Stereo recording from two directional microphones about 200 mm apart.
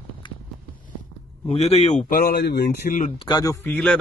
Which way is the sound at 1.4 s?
30° left (ahead or behind).